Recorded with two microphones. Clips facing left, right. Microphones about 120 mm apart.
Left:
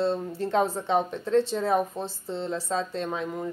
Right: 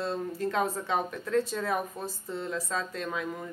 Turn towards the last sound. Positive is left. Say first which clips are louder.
# left 4 dB
turn(degrees=30)  # may be behind; listen again after turning